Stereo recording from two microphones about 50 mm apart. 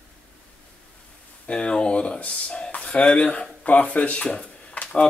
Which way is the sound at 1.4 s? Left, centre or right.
Left.